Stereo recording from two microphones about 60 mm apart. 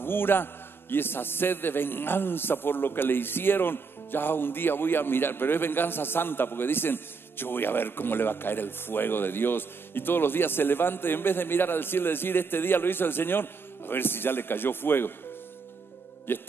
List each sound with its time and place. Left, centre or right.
0.0 s a man's voice: left
16.3 s a man's voice: left